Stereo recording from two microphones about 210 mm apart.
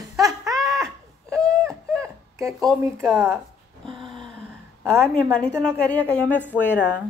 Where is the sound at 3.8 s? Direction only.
25° right (ahead or behind).